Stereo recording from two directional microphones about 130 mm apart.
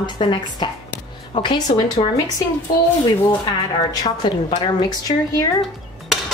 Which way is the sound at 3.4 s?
35° left (ahead or behind).